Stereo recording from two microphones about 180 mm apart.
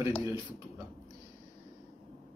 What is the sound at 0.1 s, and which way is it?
Speech, 25° left (ahead or behind).